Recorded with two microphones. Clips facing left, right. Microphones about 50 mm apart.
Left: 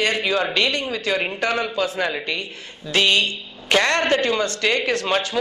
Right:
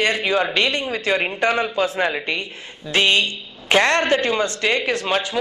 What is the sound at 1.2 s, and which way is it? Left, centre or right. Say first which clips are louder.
Speech: right 3 dB; centre.